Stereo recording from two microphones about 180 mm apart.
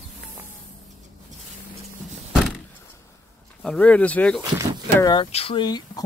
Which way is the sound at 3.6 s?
5° left (ahead or behind).